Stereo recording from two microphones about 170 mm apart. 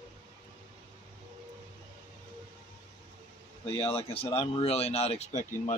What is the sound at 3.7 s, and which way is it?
Speech, 35° left (ahead or behind).